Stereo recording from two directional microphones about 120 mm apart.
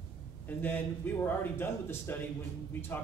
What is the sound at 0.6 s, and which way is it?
A man's voice, 15° left (ahead or behind).